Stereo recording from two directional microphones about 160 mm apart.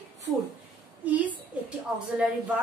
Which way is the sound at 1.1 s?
10° right (ahead or behind).